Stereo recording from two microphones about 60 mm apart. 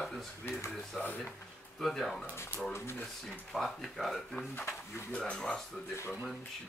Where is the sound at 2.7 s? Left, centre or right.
Left.